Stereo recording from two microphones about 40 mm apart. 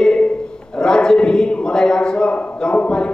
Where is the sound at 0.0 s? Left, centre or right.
Left.